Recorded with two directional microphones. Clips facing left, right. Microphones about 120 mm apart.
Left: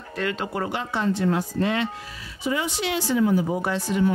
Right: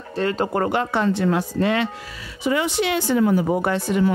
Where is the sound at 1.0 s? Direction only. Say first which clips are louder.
Right 3 dB; 90° right.